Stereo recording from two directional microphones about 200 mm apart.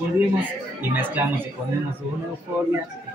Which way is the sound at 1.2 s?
10° right (ahead or behind).